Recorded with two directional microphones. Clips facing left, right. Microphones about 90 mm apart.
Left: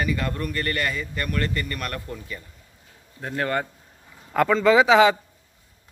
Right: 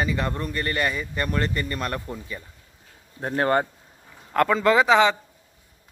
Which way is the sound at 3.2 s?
30° right (ahead or behind).